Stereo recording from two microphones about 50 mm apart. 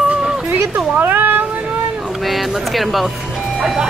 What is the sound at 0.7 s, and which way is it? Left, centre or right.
Speech, right.